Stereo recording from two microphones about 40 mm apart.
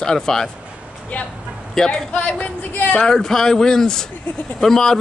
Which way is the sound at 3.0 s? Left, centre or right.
Centre.